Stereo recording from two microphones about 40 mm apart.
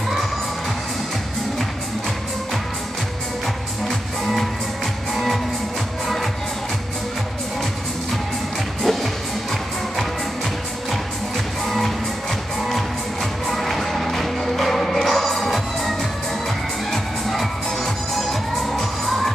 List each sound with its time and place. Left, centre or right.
4.2 s music: centre
8.8 s music: centre
11.6 s music: centre
13.5 s music: centre
16.9 s music: centre